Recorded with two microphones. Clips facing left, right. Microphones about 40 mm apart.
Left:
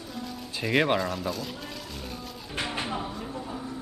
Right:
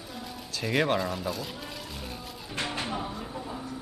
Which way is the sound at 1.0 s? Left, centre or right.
Centre.